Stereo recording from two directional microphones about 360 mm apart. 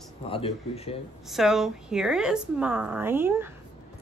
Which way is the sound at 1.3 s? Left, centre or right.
Centre.